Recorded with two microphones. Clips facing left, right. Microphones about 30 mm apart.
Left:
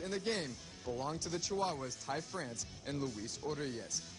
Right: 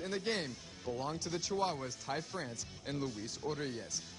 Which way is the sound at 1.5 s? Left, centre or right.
Right.